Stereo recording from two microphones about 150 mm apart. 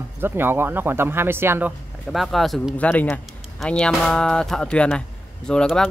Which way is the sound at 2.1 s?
Centre (ahead or behind).